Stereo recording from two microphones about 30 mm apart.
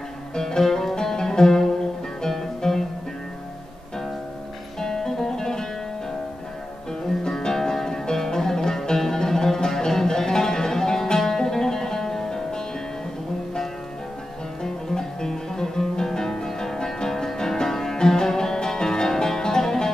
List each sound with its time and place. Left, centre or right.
0.3 s music: left
4.7 s music: centre
7.2 s music: centre
14.6 s music: centre